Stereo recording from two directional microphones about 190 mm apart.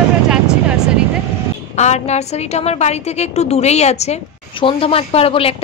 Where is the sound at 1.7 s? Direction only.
35° left (ahead or behind).